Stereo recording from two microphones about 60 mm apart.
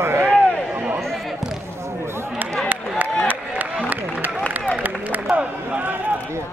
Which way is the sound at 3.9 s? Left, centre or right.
Right.